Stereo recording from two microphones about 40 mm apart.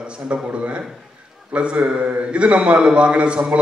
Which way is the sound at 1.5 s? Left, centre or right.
Right.